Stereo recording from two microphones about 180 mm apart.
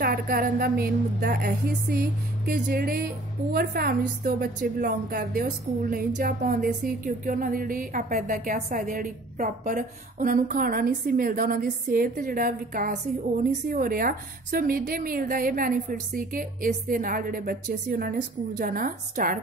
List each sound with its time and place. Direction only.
0.0 s a woman's voice: 55° right (ahead or behind)